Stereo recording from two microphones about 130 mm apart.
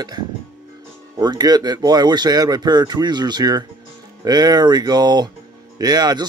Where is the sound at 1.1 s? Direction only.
30° right (ahead or behind).